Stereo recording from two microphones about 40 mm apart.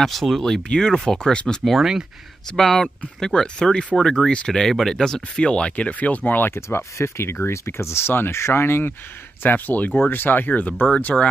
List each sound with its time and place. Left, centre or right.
0.0 s speech: centre
0.7 s speech: left
1.8 s speech: centre
2.5 s speech: centre
5.4 s speech: left
6.5 s speech: left
9.4 s speech: left